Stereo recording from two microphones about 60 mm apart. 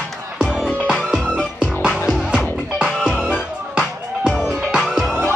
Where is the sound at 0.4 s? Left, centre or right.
Centre.